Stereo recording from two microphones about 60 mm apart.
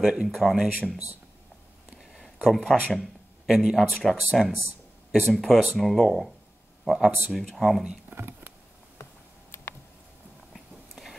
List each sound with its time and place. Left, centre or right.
0.0 s speech: centre
0.3 s speech: centre
2.0 s a sound: centre
2.4 s speech: centre
3.0 s speech: centre
6.8 s a sound: centre
7.2 s speech: centre
8.1 s a sound: right
10.5 s biting: centre